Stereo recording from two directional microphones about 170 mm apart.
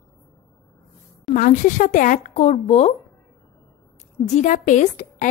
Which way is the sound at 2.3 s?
40° left (ahead or behind).